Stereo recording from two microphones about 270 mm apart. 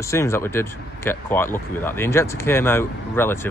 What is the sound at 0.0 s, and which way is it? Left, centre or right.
Speech, centre.